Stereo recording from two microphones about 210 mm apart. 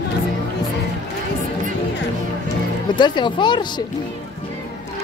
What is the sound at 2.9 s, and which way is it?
Speech, 20° left (ahead or behind).